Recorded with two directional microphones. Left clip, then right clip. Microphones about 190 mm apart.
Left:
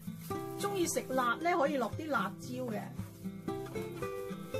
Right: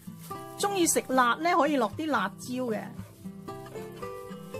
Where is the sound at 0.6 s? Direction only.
65° right (ahead or behind).